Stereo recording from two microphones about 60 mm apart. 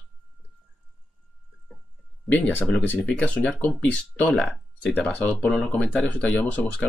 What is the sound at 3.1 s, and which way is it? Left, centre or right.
Speech, left.